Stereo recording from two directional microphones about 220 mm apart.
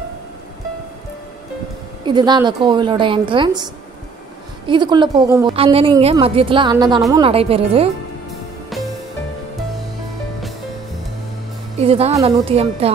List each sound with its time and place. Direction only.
2.0 s a woman's voice: 20° right (ahead or behind)
11.8 s a woman's voice: 25° right (ahead or behind)